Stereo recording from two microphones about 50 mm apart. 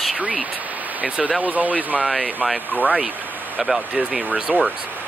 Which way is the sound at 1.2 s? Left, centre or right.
Right.